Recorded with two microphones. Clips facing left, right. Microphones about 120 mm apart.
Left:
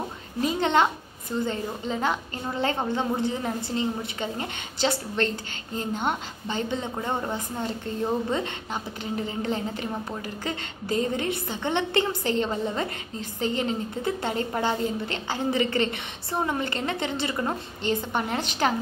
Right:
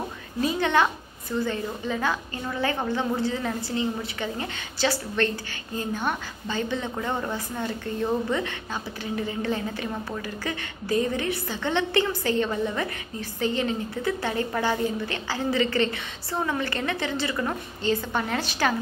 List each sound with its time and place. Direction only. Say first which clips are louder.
0.4 s a child's voice: even; 20° left (ahead or behind)